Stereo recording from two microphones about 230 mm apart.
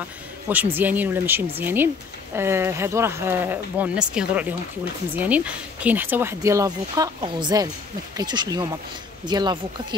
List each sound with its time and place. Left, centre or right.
0.5 s speech: centre